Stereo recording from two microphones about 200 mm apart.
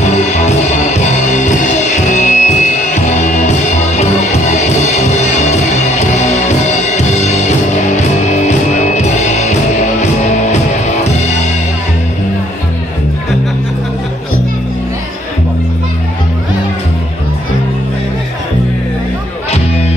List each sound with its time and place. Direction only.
0.5 s music: 35° left (ahead or behind)
7.0 s music: 35° left (ahead or behind)